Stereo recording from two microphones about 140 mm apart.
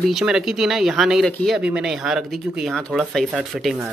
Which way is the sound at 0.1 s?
5° right (ahead or behind).